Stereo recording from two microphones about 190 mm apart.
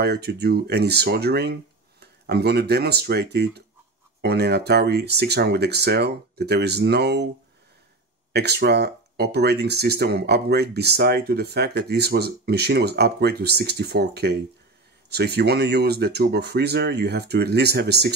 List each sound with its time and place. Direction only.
0.0 s speech: 60° right (ahead or behind)
8.3 s speech: 60° right (ahead or behind)